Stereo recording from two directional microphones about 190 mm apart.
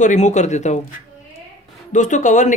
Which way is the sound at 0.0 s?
40° left (ahead or behind).